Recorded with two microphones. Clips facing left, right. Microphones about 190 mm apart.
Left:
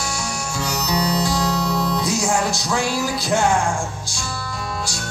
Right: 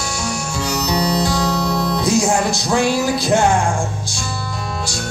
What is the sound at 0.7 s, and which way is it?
Music, 25° right (ahead or behind).